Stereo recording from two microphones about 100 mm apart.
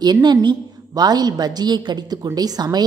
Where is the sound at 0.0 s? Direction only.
45° right (ahead or behind).